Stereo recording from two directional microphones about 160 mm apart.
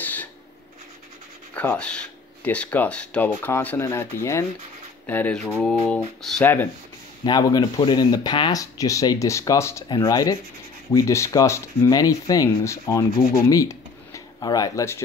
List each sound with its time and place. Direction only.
0.0 s rub: 10° left (ahead or behind)
1.5 s speech: 10° left (ahead or behind)
6.4 s speech: 15° left (ahead or behind)
7.2 s speech: 25° left (ahead or behind)
13.5 s a sound: 20° left (ahead or behind)